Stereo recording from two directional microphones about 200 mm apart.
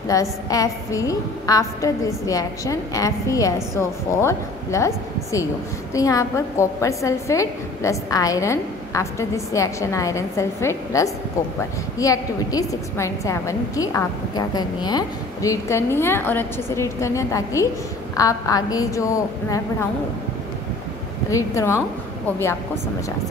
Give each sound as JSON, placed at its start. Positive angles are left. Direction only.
{"t": 0.1, "sound": "a woman's voice", "side_deg": 15}
{"t": 21.3, "sound": "a woman's voice", "side_deg": 15}